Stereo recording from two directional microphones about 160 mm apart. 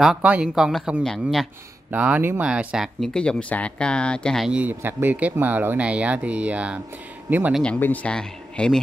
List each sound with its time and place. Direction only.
0.0 s speech: 5° right (ahead or behind)
1.9 s speech: 10° right (ahead or behind)
7.6 s speech: 10° left (ahead or behind)